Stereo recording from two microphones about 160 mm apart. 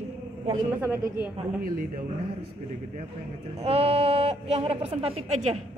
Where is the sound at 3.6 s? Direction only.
35° right (ahead or behind).